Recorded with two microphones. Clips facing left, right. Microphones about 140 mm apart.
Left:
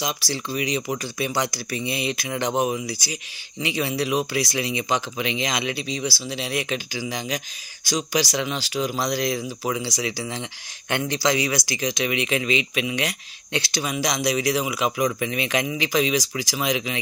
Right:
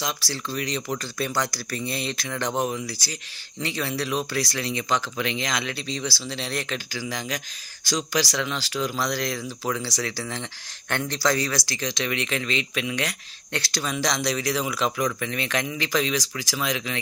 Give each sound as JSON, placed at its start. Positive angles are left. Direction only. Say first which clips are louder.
{"t": 0.0, "sound": "speech", "louder": "left 2 dB", "side_deg": 15}